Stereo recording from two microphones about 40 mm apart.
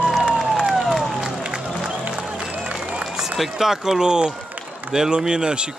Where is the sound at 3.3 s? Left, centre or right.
Centre.